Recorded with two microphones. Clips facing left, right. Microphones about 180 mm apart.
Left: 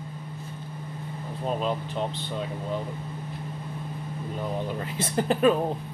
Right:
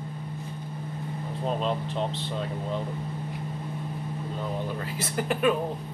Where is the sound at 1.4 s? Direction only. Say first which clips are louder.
Even; 5° left (ahead or behind).